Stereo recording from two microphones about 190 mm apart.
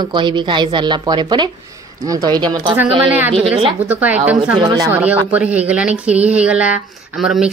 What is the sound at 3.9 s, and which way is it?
Speech, 10° right (ahead or behind).